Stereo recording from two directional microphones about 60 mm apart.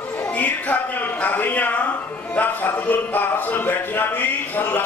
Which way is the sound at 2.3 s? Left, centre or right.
Left.